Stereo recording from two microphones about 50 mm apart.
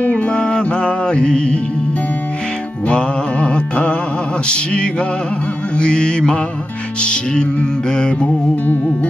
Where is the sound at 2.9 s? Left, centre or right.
Left.